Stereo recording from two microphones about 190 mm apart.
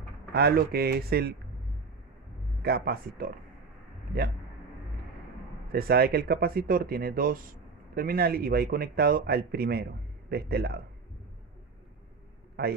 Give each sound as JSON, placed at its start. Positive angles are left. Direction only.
{"t": 0.3, "sound": "speech", "side_deg": -55}
{"t": 2.6, "sound": "speech", "side_deg": -55}
{"t": 5.7, "sound": "speech", "side_deg": -55}
{"t": 12.6, "sound": "speech", "side_deg": -55}